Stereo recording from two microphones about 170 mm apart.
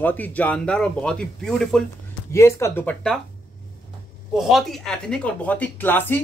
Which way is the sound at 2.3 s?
15° left (ahead or behind).